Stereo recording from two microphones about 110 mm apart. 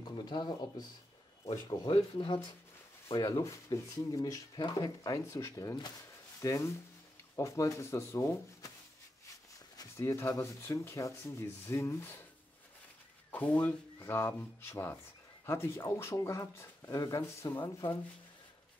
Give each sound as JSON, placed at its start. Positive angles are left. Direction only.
{"t": 0.2, "sound": "speech", "side_deg": 40}
{"t": 1.9, "sound": "speech", "side_deg": 50}
{"t": 3.3, "sound": "speech", "side_deg": 30}
{"t": 9.8, "sound": "speech", "side_deg": 25}
{"t": 13.3, "sound": "speech", "side_deg": 15}
{"t": 13.9, "sound": "speech", "side_deg": 25}